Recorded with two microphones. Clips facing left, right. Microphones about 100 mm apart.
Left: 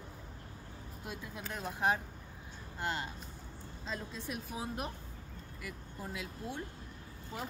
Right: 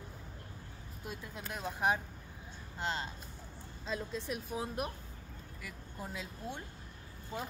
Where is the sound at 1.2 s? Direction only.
Centre (ahead or behind).